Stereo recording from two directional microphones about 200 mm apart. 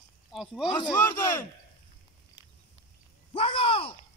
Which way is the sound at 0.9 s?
10° left (ahead or behind).